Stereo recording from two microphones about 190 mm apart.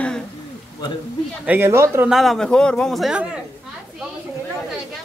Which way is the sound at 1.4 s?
10° right (ahead or behind).